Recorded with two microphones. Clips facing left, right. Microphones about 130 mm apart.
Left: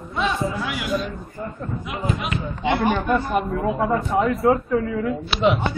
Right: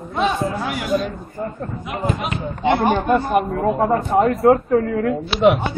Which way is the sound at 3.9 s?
45° right (ahead or behind).